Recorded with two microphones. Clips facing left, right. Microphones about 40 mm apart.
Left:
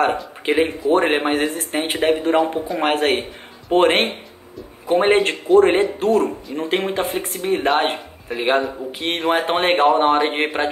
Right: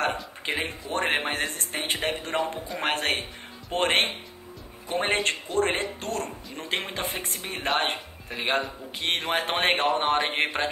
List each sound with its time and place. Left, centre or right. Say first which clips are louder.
0.0 s a man's voice: left 8 dB; centre
4.8 s a man's voice: left 11 dB; centre
5.1 s speech: left 12 dB; centre